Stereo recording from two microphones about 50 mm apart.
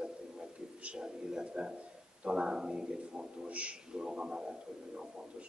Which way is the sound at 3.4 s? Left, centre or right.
Right.